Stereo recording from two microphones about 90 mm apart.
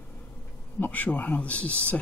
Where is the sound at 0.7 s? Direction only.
20° left (ahead or behind).